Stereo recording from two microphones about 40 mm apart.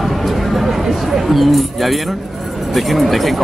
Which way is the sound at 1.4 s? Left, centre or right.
Centre.